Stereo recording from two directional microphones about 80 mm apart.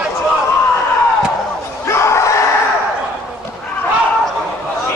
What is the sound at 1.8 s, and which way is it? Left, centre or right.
Battle cry, left.